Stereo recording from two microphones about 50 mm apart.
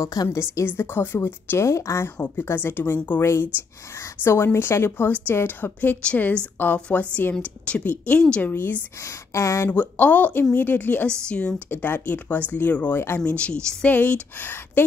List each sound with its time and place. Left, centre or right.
0.0 s a woman's voice: left
0.7 s a woman's voice: left
2.1 s a woman's voice: left
3.2 s a woman's voice: left
8.4 s speech: left
9.0 s speech: left
9.7 s speech: left
11.2 s a woman's voice: left
11.7 s speech: left
12.9 s a woman's voice: left
13.2 s a woman's voice: left
13.8 s speech: left